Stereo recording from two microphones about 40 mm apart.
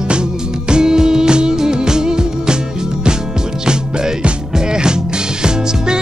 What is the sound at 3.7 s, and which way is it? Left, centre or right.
Music, centre.